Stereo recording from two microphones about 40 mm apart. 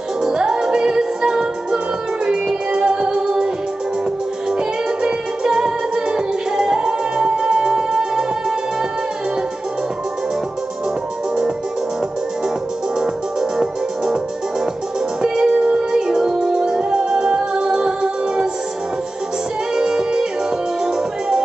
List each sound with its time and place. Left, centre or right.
0.2 s music: centre
4.5 s music: centre
13.0 s music: centre
15.2 s music: centre
19.7 s music: centre